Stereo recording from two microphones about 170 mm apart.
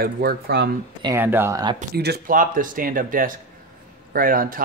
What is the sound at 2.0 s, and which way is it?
Speech, 65° right (ahead or behind).